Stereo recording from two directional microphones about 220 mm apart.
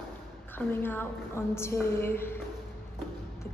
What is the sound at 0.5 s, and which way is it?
A woman's voice, 10° left (ahead or behind).